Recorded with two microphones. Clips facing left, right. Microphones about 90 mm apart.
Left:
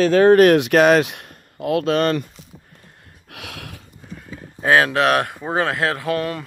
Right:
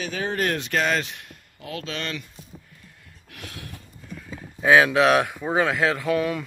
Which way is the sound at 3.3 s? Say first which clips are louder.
Left 4 dB; 70° left (ahead or behind).